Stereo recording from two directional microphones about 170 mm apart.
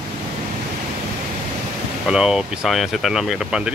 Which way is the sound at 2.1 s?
5° right (ahead or behind).